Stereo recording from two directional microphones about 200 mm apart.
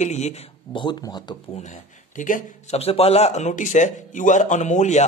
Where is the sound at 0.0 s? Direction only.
35° left (ahead or behind).